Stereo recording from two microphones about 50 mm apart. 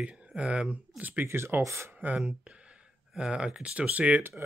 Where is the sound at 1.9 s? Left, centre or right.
Right.